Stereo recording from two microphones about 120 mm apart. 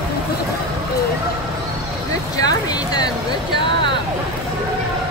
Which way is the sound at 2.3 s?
35° left (ahead or behind).